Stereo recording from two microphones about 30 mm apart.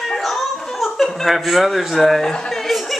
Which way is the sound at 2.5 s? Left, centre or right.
Centre.